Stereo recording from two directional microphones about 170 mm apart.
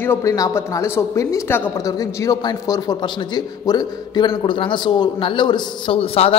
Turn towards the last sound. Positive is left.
turn(degrees=35)  # may be behind; listen again after turning